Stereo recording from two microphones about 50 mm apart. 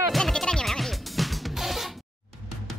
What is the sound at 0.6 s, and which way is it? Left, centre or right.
Music, centre.